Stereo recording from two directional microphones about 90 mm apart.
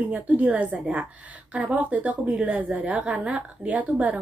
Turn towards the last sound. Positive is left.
turn(degrees=-15)  # may be behind; listen again after turning